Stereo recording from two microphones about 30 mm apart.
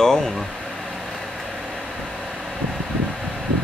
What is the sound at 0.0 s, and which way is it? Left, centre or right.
Air conditioning, centre.